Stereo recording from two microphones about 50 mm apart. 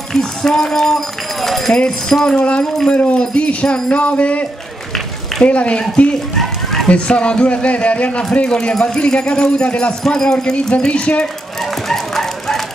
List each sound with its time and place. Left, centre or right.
0.1 s speech: centre
2.9 s music: left
6.4 s children playing: centre
6.9 s music: left
8.2 s speech: centre
9.7 s music: left
10.0 s speech: centre
10.9 s music: left
11.6 s dog: centre